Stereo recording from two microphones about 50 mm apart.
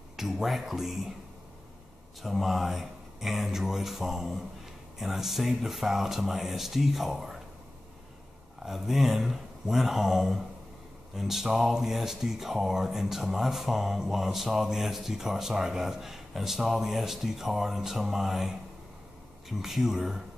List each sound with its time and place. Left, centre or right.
0.1 s speech: centre
2.2 s speech: centre
8.6 s speech: centre
19.6 s speech: centre